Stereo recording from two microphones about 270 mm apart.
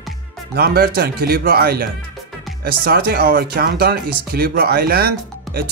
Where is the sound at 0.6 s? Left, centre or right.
Right.